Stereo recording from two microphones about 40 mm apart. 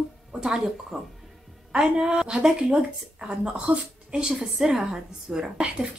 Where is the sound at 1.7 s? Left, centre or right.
Right.